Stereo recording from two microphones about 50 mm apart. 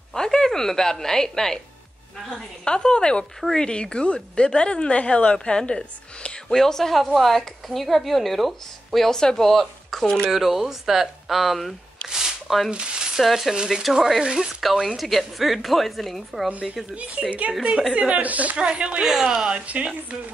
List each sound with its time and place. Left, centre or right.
0.1 s a woman's voice: centre
2.6 s a woman's voice: centre
6.5 s speech: centre
10.3 s speech: centre
12.1 s a sound: centre
13.2 s speech: centre
14.6 s speech: centre
16.9 s a woman's voice: right
18.6 s a woman's voice: right
19.6 s a woman's voice: right